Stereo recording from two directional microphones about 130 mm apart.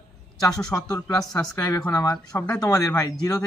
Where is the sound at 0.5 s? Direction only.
5° left (ahead or behind).